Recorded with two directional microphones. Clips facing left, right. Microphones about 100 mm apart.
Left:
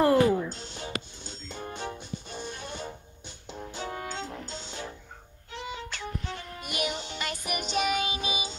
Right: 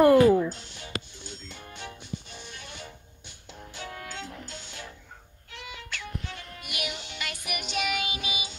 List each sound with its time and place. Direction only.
0.5 s music: 30° left (ahead or behind)